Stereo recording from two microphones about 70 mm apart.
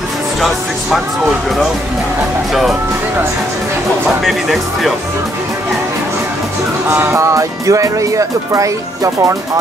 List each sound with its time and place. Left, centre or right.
4.2 s speech: centre
7.0 s speech: right